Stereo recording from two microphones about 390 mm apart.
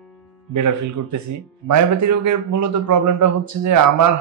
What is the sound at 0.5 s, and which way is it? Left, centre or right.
Speech, right.